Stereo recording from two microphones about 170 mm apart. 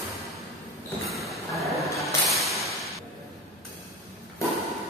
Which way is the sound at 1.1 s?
Centre (ahead or behind).